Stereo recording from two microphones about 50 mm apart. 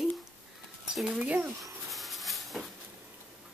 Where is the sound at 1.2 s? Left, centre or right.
Right.